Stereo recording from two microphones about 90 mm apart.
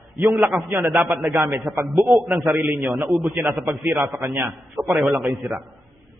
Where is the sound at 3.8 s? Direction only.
30° right (ahead or behind).